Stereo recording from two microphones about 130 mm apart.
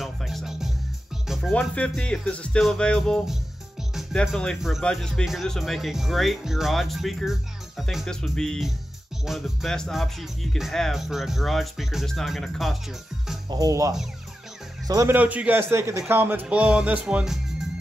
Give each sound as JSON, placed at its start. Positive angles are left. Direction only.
{"t": 0.0, "sound": "music", "side_deg": 0}
{"t": 1.5, "sound": "speech", "side_deg": 10}
{"t": 13.5, "sound": "speech", "side_deg": -30}
{"t": 15.1, "sound": "a man's voice", "side_deg": -10}